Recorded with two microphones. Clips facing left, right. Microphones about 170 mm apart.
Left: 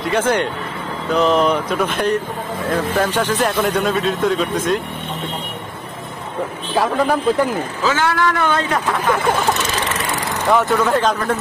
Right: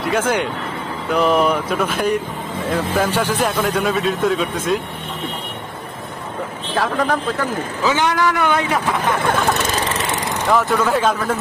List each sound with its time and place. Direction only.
0.1 s speech: 10° right (ahead or behind)
6.7 s speech: 5° left (ahead or behind)
7.8 s speech: 20° right (ahead or behind)
9.4 s speech: 50° right (ahead or behind)
10.0 s speech: centre (ahead or behind)